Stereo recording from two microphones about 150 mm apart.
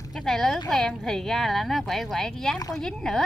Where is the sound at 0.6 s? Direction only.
Centre (ahead or behind).